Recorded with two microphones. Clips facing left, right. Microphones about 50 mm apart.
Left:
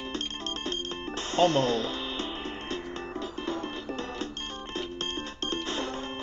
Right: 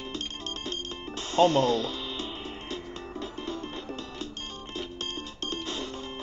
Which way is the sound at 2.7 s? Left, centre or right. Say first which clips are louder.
Left 2 dB; left.